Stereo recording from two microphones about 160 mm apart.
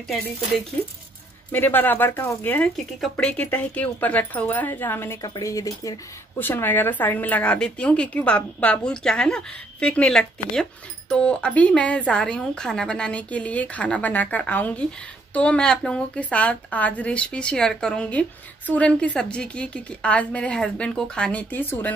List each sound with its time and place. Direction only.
1.5 s a woman's voice: 10° left (ahead or behind)